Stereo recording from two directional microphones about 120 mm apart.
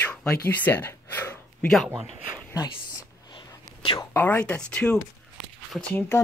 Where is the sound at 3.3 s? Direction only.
45° left (ahead or behind).